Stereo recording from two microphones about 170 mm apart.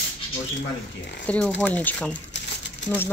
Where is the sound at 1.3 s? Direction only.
5° left (ahead or behind).